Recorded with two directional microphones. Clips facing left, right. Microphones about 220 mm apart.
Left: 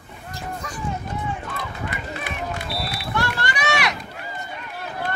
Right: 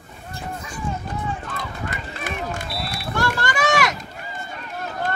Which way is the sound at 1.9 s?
45° right (ahead or behind).